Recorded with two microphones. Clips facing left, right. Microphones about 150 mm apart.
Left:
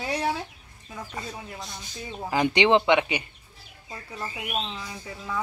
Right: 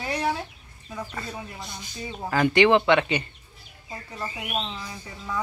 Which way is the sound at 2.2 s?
20° left (ahead or behind).